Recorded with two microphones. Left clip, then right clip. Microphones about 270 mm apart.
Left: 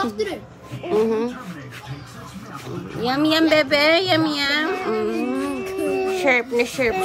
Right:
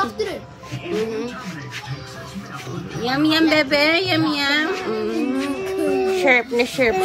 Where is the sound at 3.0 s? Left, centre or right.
Centre.